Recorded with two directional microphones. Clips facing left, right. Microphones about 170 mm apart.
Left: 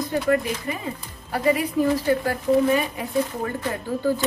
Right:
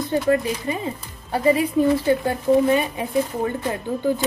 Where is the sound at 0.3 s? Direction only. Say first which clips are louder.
Right 1 dB; 25° right (ahead or behind).